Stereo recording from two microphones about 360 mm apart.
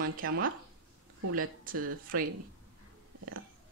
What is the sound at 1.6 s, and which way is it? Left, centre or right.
Speech, right.